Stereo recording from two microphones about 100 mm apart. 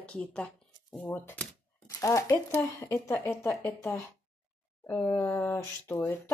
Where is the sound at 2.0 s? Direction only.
25° left (ahead or behind).